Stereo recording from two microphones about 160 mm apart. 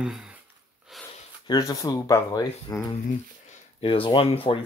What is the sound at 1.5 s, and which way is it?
Speech, 25° left (ahead or behind).